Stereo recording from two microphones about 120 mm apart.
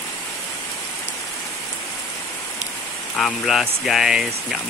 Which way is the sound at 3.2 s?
Centre (ahead or behind).